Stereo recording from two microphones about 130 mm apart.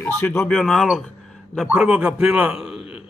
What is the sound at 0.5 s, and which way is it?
A man's voice, 5° left (ahead or behind).